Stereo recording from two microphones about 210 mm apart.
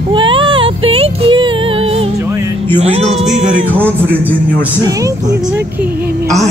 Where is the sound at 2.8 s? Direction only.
30° right (ahead or behind).